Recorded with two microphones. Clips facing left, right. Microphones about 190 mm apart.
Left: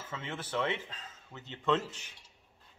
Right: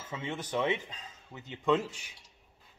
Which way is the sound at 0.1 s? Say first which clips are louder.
Right 3 dB; 15° right (ahead or behind).